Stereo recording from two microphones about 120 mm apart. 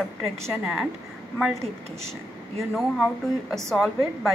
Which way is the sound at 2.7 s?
Centre (ahead or behind).